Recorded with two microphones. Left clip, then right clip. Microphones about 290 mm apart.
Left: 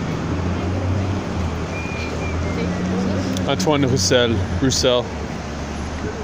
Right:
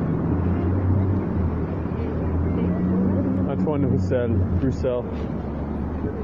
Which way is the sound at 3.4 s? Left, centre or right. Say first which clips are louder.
Left 6 dB; left.